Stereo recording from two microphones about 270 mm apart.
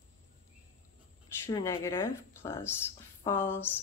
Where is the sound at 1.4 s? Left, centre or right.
Centre.